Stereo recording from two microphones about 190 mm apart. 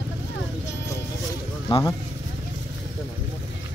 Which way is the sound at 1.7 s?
20° left (ahead or behind).